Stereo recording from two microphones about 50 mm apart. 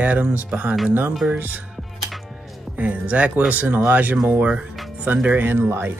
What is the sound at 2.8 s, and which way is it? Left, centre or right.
Speech, right.